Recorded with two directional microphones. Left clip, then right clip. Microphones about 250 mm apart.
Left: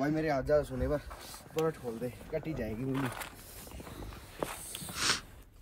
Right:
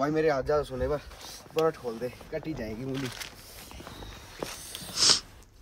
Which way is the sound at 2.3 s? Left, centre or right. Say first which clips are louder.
Right 2 dB; centre.